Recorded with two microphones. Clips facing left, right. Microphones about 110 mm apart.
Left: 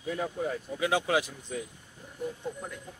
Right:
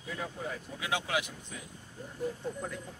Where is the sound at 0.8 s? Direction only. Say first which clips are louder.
Left 6 dB; 30° left (ahead or behind).